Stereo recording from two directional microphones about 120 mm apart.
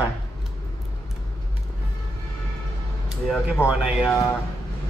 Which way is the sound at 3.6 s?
20° left (ahead or behind).